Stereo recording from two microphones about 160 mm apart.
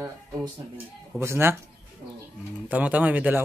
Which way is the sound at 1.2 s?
15° right (ahead or behind).